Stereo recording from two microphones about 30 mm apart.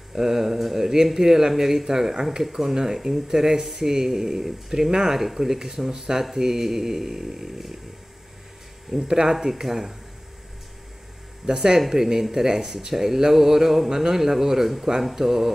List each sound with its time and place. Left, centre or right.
0.1 s speech: centre
9.0 s speech: centre
11.4 s speech: centre